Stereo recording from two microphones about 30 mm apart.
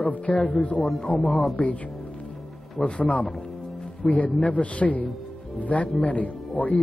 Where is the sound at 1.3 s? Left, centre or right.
Centre.